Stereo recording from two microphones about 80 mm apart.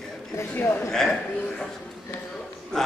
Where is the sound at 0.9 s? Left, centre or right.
Centre.